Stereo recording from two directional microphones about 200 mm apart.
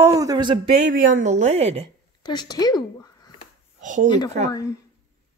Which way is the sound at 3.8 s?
40° right (ahead or behind).